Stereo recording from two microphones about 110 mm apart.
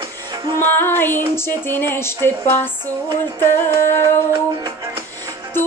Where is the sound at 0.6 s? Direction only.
20° left (ahead or behind).